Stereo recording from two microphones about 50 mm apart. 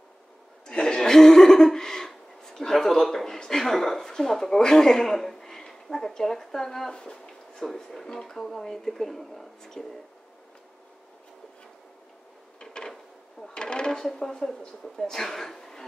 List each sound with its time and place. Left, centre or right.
0.7 s chuckle: centre
3.3 s speech: centre
12.5 s a sound: centre
14.0 s speech: centre